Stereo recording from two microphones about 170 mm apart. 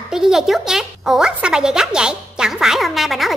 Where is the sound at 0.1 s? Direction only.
5° right (ahead or behind).